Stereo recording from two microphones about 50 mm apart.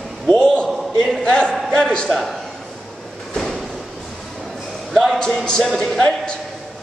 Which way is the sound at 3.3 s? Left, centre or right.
Centre.